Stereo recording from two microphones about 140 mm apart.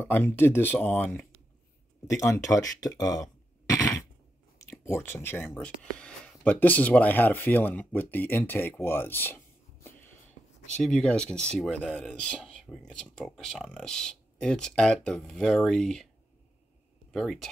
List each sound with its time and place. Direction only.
0.0 s speech: 15° left (ahead or behind)
2.0 s speech: 20° left (ahead or behind)
4.6 s speech: 15° left (ahead or behind)
10.7 s speech: 5° left (ahead or behind)
17.1 s speech: 5° left (ahead or behind)